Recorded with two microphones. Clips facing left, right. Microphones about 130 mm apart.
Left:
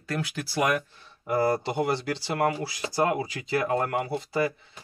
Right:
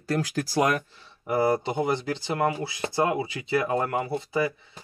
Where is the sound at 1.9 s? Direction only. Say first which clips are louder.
Right 1 dB; 20° right (ahead or behind).